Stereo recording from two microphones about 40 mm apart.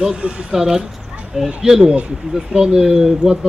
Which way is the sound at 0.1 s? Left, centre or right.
Right.